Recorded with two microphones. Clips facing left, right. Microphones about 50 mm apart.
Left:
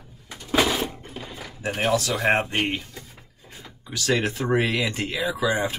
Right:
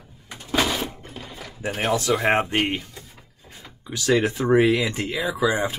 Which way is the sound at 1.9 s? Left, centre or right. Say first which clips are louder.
Right 2 dB; right.